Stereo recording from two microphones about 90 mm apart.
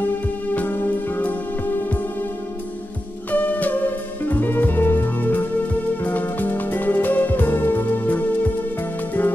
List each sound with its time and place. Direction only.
0.6 s music: 20° left (ahead or behind)
3.3 s music: 20° left (ahead or behind)